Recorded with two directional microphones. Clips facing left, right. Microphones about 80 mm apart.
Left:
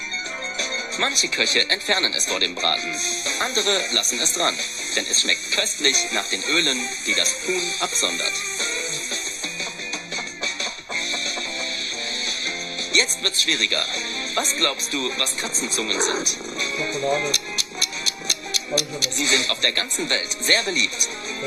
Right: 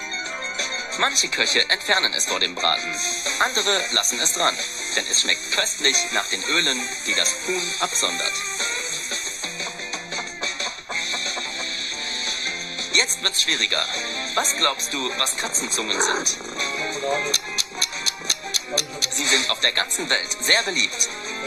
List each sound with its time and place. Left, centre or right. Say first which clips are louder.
0.6 s speech: right 2 dB; right
12.9 s speech: left 1 dB; right